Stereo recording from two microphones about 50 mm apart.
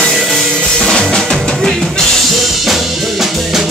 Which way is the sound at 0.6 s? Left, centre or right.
Centre.